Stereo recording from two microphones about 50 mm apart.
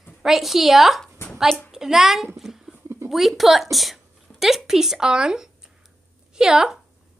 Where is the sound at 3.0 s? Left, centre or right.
Centre.